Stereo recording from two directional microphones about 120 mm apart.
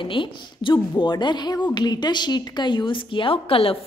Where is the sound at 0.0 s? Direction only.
45° left (ahead or behind).